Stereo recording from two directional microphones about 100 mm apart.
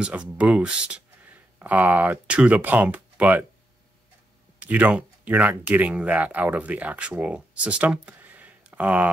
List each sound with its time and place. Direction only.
0.0 s speech: 10° right (ahead or behind)
4.6 s speech: 15° right (ahead or behind)